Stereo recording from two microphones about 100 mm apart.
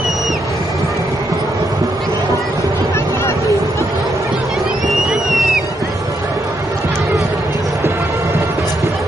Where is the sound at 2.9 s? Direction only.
25° left (ahead or behind).